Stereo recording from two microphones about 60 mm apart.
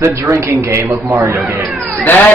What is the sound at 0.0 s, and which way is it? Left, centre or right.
Speech, right.